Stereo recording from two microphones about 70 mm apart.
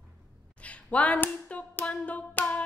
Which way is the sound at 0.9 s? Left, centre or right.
Left.